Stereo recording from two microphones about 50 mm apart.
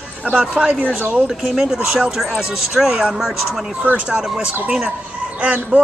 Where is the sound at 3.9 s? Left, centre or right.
Right.